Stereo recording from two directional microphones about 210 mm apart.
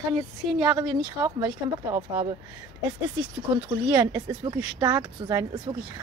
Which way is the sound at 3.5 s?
20° right (ahead or behind).